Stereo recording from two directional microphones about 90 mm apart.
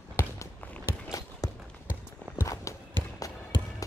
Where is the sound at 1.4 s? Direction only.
40° left (ahead or behind).